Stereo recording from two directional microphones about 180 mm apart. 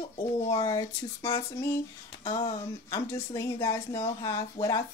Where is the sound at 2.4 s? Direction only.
20° left (ahead or behind).